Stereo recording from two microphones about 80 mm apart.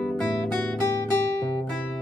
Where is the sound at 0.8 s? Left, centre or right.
Left.